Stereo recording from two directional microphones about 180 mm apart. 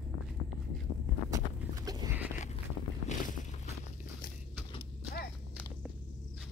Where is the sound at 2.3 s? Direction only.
40° left (ahead or behind).